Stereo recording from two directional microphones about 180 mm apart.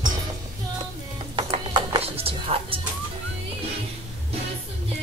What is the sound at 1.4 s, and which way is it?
Music, 25° right (ahead or behind).